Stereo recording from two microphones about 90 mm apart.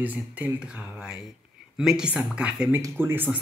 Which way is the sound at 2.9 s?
25° right (ahead or behind).